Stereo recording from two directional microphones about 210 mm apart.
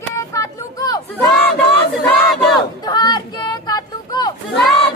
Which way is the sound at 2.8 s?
20° left (ahead or behind).